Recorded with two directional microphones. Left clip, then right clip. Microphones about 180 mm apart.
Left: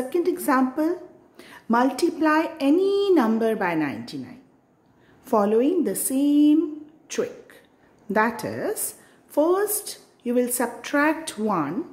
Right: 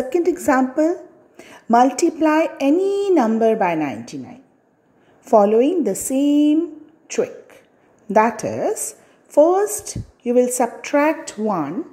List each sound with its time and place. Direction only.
0.1 s a woman's voice: 20° right (ahead or behind)
5.2 s a woman's voice: 15° right (ahead or behind)
7.1 s a sound: 10° right (ahead or behind)
8.1 s a woman's voice: 20° right (ahead or behind)